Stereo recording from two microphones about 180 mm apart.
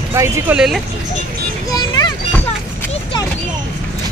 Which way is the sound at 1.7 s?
20° left (ahead or behind).